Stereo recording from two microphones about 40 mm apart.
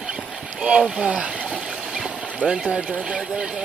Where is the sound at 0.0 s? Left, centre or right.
Right.